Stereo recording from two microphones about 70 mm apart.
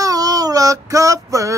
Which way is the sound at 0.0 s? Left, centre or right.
Right.